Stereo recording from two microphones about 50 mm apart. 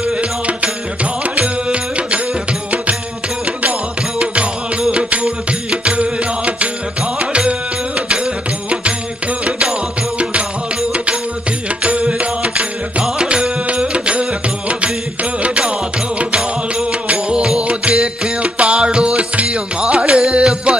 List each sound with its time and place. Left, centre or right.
0.2 s music: right
4.9 s music: right
9.4 s music: centre
11.8 s music: right
15.4 s music: right
17.1 s music: centre